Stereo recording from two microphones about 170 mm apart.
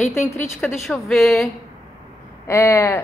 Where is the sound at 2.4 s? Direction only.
15° left (ahead or behind).